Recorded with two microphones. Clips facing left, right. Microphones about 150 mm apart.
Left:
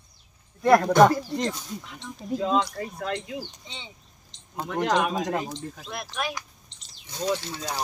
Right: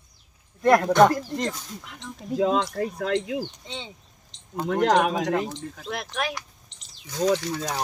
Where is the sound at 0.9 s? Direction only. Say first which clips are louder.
Even; 10° left (ahead or behind).